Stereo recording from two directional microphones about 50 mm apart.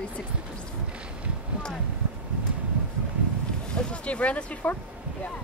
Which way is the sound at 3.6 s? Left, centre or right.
Centre.